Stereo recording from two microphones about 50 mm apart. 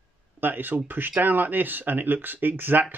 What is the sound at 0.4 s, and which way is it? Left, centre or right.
Speech, right.